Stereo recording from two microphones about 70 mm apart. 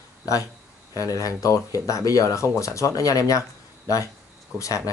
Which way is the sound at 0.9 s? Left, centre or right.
Left.